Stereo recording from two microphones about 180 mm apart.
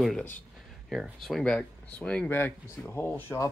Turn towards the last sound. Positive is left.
turn(degrees=10)  # may be behind; listen again after turning